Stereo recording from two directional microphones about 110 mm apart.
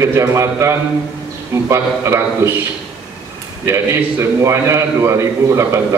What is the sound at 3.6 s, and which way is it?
A man's voice, 25° right (ahead or behind).